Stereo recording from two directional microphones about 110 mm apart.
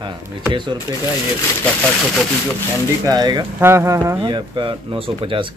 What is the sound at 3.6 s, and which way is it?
Speech, 20° right (ahead or behind).